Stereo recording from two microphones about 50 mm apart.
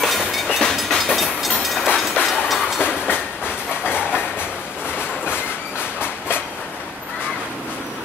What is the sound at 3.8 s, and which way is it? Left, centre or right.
Train, left.